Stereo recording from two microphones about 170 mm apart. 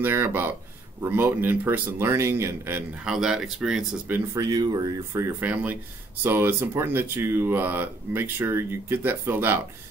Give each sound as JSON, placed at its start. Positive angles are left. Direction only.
{"t": 0.0, "sound": "speech", "side_deg": -15}
{"t": 3.1, "sound": "speech", "side_deg": -5}
{"t": 4.3, "sound": "speech", "side_deg": -20}